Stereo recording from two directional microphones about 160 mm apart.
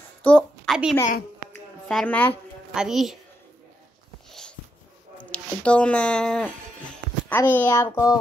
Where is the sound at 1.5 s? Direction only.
5° left (ahead or behind).